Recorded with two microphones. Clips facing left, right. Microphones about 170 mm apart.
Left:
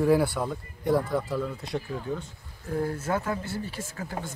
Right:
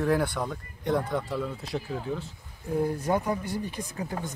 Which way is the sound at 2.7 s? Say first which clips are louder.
Right 2 dB; 15° right (ahead or behind).